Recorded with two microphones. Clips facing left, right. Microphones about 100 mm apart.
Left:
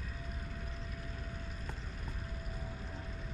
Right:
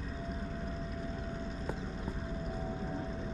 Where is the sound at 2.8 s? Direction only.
30° right (ahead or behind).